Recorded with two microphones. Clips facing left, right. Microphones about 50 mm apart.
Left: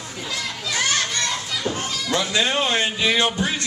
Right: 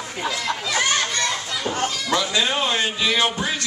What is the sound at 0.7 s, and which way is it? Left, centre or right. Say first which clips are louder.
Children playing: even; centre.